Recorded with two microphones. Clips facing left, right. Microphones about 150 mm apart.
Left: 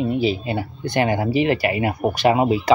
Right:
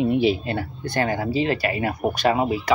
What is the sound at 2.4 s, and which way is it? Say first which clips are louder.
Speech: left 5 dB; 20° left (ahead or behind).